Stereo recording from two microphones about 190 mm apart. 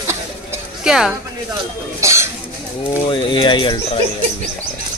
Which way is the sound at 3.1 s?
25° left (ahead or behind).